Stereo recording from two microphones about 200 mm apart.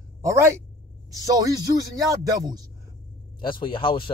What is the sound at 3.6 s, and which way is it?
Speech, 25° left (ahead or behind).